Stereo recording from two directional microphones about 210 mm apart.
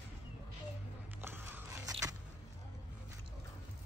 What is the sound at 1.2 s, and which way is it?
Biting, 10° right (ahead or behind).